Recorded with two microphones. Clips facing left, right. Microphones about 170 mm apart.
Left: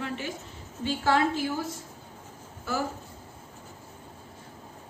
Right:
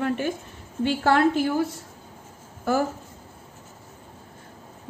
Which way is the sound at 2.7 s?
55° right (ahead or behind).